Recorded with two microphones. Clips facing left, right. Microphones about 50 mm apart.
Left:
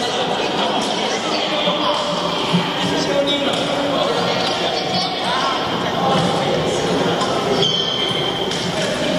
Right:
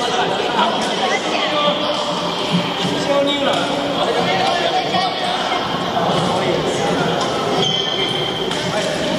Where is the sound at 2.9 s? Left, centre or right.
Centre.